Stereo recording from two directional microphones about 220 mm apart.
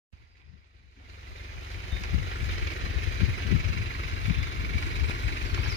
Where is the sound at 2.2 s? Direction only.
60° left (ahead or behind).